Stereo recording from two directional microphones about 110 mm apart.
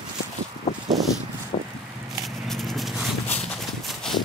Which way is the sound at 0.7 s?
75° left (ahead or behind).